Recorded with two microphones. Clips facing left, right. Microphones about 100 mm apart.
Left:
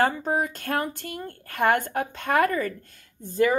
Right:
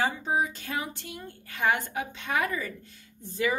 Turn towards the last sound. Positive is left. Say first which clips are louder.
# left 7 dB
turn(degrees=45)  # may be behind; listen again after turning